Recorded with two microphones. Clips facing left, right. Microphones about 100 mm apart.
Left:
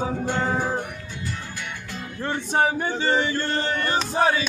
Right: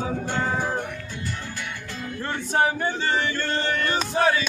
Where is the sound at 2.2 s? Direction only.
15° left (ahead or behind).